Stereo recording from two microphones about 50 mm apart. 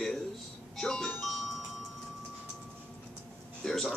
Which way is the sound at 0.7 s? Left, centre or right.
Centre.